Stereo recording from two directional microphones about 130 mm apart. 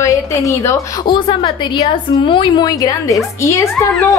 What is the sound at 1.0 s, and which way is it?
A woman's voice, 40° left (ahead or behind).